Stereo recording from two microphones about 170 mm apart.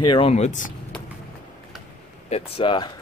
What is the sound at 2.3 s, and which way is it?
Speech, 30° left (ahead or behind).